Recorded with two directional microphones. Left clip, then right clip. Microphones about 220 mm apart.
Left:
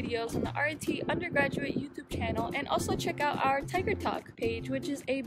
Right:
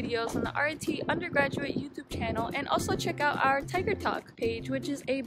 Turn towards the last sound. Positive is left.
turn(degrees=0)  # may be behind; listen again after turning